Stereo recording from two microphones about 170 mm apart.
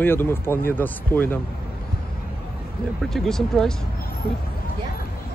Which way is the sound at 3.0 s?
Centre (ahead or behind).